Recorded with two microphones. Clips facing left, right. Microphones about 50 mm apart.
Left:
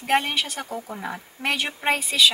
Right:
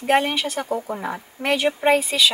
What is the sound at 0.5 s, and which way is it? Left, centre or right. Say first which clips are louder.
Speech: right 7 dB; right.